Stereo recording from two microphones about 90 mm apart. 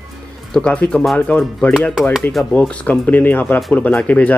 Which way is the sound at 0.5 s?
10° left (ahead or behind).